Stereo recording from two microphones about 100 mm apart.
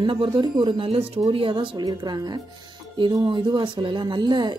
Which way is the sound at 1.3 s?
60° right (ahead or behind).